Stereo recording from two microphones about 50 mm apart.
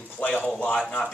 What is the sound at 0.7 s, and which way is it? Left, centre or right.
Speech, centre.